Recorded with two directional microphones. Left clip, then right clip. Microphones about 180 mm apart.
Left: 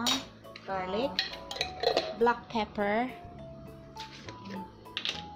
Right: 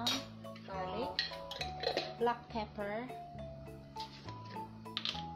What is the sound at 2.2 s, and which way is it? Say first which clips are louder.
Speech: left 7 dB; 45° left (ahead or behind).